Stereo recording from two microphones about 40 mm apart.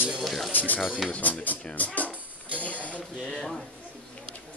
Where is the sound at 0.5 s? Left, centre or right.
Left.